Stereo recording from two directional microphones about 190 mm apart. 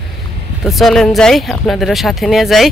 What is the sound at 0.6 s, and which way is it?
Speech, centre (ahead or behind).